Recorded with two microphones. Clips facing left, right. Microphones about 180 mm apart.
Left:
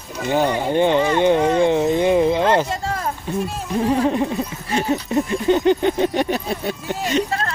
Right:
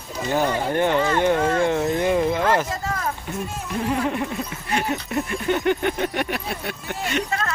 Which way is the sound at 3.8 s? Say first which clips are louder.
Left 6 dB; 30° left (ahead or behind).